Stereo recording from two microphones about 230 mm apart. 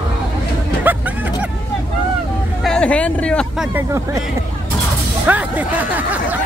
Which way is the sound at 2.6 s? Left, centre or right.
Centre.